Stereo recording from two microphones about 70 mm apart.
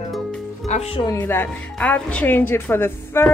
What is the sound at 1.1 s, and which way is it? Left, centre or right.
Speech, left.